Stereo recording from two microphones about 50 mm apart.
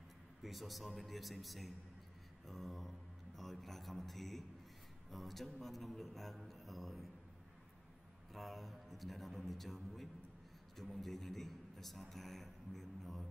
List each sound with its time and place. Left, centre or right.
0.4 s a man's voice: centre
8.3 s a man's voice: centre